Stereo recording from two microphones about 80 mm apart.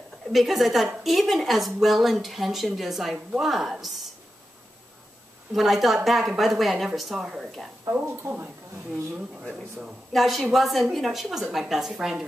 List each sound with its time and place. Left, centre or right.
0.3 s speech: centre
5.5 s speech: centre
7.9 s speech: right
9.8 s speech: centre